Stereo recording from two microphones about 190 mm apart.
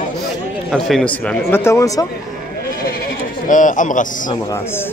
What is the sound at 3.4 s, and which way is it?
Speech, 45° left (ahead or behind).